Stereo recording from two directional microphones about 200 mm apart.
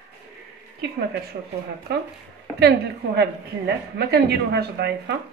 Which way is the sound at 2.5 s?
55° right (ahead or behind).